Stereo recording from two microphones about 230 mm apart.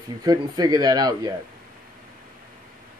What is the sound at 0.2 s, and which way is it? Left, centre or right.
Speech, centre.